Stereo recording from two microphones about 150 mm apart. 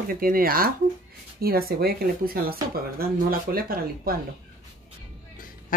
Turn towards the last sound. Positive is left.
turn(degrees=70)  # may be behind; listen again after turning